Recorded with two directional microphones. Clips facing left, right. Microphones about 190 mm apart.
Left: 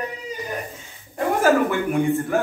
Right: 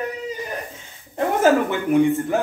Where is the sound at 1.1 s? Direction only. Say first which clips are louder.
Right 1 dB; 20° right (ahead or behind).